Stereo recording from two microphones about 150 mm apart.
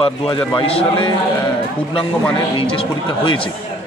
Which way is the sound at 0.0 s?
35° left (ahead or behind).